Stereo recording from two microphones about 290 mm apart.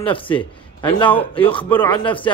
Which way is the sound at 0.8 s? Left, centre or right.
Centre.